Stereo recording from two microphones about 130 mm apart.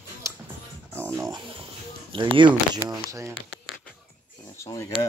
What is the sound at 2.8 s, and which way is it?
Speech, 25° right (ahead or behind).